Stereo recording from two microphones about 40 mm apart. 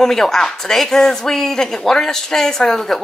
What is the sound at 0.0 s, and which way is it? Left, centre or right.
A woman's voice, centre.